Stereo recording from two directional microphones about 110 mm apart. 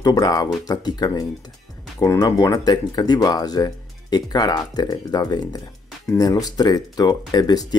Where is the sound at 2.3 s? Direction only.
30° left (ahead or behind).